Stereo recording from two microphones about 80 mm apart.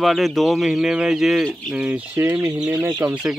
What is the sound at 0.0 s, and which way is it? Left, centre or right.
Speech, centre.